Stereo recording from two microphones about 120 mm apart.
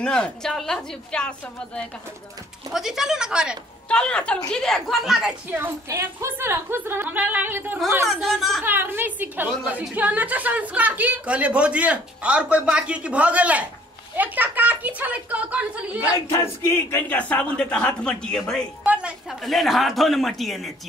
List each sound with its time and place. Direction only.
0.0 s speech: 5° left (ahead or behind)
2.7 s speech: 5° right (ahead or behind)
3.9 s speech: 10° left (ahead or behind)
5.9 s a woman's voice: 20° right (ahead or behind)
8.1 s speech: centre (ahead or behind)
8.6 s a woman's voice: 15° right (ahead or behind)
16.6 s speech: 15° left (ahead or behind)
18.9 s speech: 10° right (ahead or behind)